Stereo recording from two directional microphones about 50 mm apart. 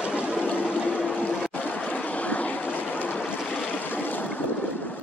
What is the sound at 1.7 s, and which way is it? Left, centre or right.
Water, left.